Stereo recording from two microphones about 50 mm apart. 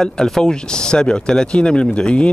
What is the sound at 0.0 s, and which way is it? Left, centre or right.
Speech, centre.